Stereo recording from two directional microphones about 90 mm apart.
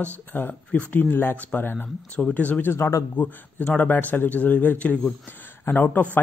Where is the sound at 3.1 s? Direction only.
15° left (ahead or behind).